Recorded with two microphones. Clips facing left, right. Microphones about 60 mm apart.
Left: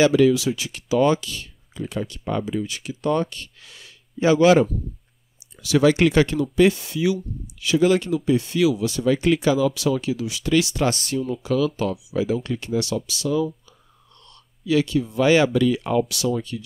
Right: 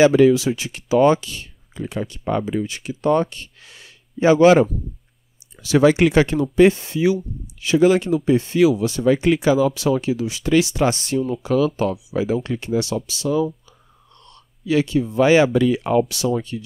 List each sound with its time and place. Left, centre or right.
0.0 s speech: right
5.9 s speech: centre
9.6 s speech: right
14.7 s speech: right